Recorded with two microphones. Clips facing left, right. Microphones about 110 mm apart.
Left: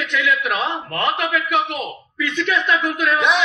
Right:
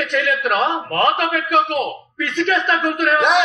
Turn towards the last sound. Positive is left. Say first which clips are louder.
# right 3 dB
turn(degrees=-45)  # may be behind; listen again after turning